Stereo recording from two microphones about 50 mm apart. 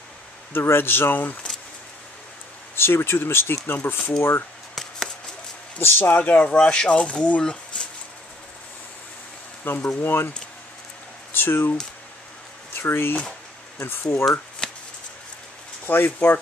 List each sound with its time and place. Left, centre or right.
0.5 s speech: left
2.7 s speech: left
4.7 s a sound: centre
5.8 s speech: left
6.2 s speech: left
9.8 s speech: left
11.3 s speech: left
12.7 s speech: left
13.7 s speech: left
14.6 s chopping: centre
15.9 s speech: left